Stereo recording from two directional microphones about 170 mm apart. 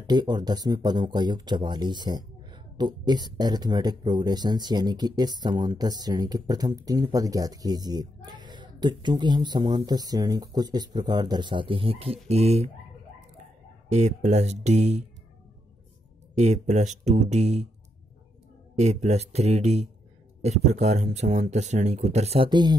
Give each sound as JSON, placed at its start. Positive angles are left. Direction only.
{"t": 0.0, "sound": "speech", "side_deg": -25}
{"t": 13.8, "sound": "speech", "side_deg": -40}
{"t": 16.3, "sound": "speech", "side_deg": -40}
{"t": 18.8, "sound": "speech", "side_deg": -40}